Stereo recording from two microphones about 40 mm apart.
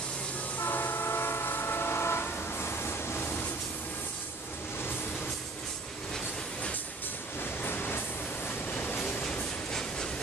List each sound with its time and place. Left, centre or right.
0.6 s train: left
7.6 s train: left
9.7 s train: centre